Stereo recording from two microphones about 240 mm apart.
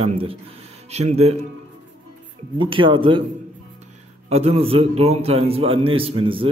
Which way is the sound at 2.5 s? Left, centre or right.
Right.